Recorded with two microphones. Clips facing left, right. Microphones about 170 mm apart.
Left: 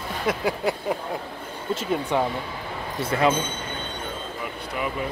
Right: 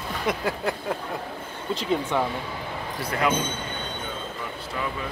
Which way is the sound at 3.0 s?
25° left (ahead or behind).